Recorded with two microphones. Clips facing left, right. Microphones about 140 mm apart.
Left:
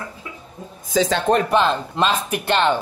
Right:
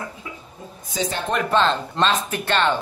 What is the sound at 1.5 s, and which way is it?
Speech, 10° left (ahead or behind).